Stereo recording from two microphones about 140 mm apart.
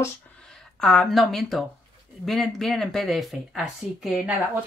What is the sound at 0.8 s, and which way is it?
Speech, 5° left (ahead or behind).